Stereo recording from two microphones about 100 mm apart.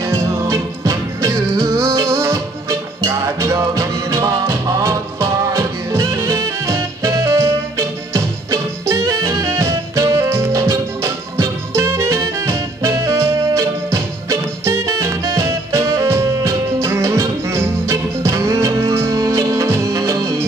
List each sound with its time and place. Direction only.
0.0 s music: 25° right (ahead or behind)